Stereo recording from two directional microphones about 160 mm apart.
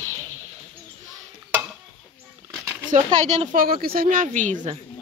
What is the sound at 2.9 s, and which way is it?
A woman's voice, 45° right (ahead or behind).